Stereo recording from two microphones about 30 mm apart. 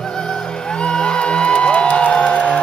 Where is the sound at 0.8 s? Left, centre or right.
Left.